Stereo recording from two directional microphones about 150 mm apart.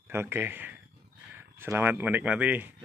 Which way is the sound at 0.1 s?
15° right (ahead or behind).